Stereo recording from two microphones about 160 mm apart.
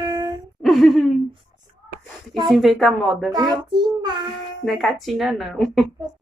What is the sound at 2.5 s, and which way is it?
Speech, centre (ahead or behind).